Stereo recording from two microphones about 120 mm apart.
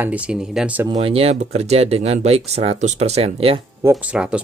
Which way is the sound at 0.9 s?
60° right (ahead or behind).